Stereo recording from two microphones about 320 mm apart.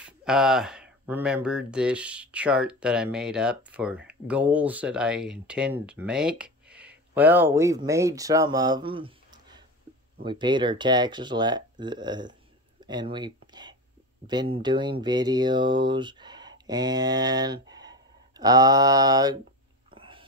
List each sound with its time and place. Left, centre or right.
0.0 s speech: centre
12.8 s a sound: centre
14.2 s speech: centre
19.9 s whispering: centre